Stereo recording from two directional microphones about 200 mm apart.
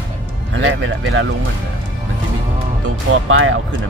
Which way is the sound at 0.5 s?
75° right (ahead or behind).